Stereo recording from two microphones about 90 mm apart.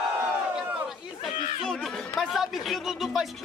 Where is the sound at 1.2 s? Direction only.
5° left (ahead or behind).